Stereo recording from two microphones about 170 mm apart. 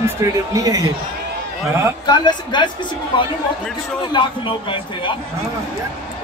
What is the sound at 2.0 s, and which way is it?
A man's voice, 25° left (ahead or behind).